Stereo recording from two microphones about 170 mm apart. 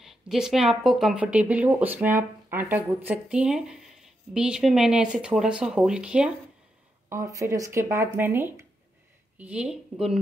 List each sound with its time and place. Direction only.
0.0 s speech: centre (ahead or behind)
7.1 s speech: 20° right (ahead or behind)